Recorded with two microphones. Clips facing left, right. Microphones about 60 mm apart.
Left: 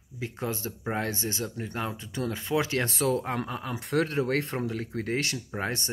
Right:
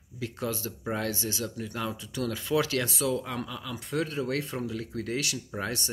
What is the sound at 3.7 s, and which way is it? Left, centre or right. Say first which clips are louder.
Speech: left 4 dB; left.